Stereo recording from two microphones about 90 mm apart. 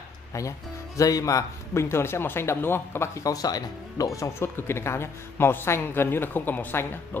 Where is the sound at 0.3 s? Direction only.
35° left (ahead or behind).